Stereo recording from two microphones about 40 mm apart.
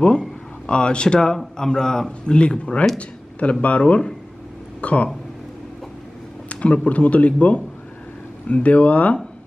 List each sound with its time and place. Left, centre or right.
0.7 s a man's voice: left
6.5 s a man's voice: left